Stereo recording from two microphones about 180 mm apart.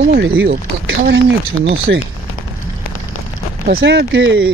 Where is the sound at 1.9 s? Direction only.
90° right.